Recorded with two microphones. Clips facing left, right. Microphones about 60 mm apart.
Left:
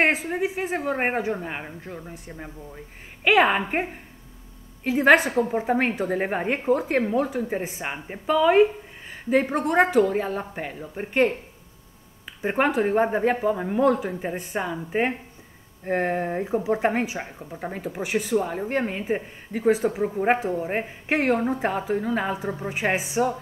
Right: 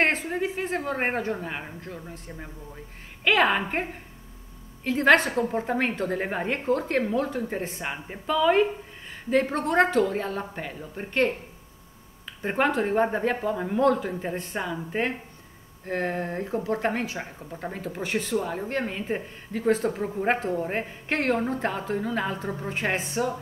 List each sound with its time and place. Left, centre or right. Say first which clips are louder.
0.0 s speech: left 2 dB; centre
4.8 s speech: left 2 dB; centre